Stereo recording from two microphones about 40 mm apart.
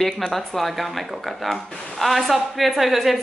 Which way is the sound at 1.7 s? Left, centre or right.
Left.